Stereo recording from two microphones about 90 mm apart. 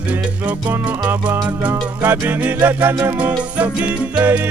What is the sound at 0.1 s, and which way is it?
Music, 15° right (ahead or behind).